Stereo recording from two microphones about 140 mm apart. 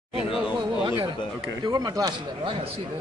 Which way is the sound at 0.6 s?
25° right (ahead or behind).